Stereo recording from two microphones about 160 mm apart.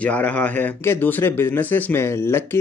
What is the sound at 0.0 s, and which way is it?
Speech, 10° left (ahead or behind).